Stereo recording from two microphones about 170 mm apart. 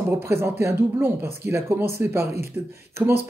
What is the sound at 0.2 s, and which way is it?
Speech, 15° right (ahead or behind).